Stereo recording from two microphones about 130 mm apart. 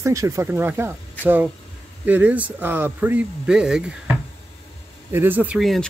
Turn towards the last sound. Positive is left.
turn(degrees=0)  # may be behind; listen again after turning